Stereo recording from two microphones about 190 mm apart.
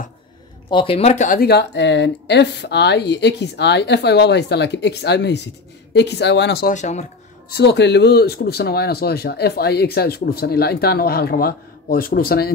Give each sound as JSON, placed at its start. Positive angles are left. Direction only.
{"t": 0.7, "sound": "speech", "side_deg": 30}
{"t": 1.4, "sound": "speech", "side_deg": 60}
{"t": 6.7, "sound": "speech", "side_deg": 40}
{"t": 7.5, "sound": "speech", "side_deg": 65}